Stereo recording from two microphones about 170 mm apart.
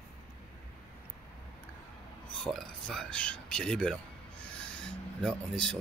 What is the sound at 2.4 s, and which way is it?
Speech, centre (ahead or behind).